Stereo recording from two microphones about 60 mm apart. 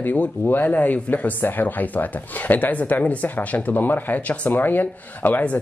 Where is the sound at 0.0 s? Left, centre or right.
Left.